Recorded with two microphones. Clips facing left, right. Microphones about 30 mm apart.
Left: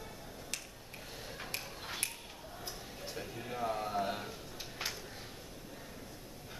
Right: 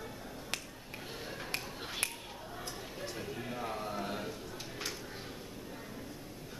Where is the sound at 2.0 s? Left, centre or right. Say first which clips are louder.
Right 5 dB; centre.